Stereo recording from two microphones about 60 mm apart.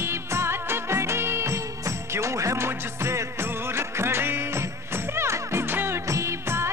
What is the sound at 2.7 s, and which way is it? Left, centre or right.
Music, right.